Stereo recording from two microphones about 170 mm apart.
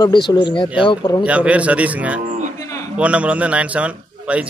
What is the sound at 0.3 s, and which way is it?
Speech, 30° left (ahead or behind).